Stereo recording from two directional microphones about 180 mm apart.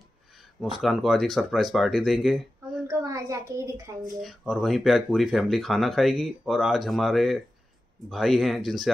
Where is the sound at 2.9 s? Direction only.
20° right (ahead or behind).